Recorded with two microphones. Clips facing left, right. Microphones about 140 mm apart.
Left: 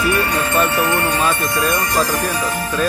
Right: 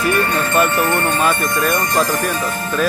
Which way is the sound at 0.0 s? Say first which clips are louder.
Right 1 dB; 50° right (ahead or behind).